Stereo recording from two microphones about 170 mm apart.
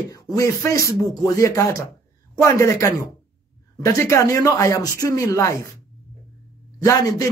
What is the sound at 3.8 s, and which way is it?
Speech, 15° left (ahead or behind).